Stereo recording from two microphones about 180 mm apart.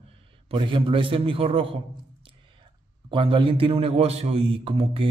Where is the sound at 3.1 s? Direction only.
30° right (ahead or behind).